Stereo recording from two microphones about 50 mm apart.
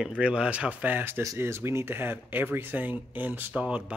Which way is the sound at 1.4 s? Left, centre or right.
Right.